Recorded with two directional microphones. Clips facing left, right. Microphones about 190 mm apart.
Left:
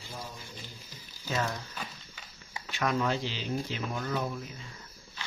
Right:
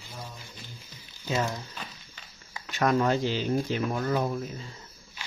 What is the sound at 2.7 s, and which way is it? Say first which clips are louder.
Speech: right 5 dB; 45° right (ahead or behind).